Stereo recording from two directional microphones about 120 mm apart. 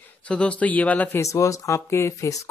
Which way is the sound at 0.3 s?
10° left (ahead or behind).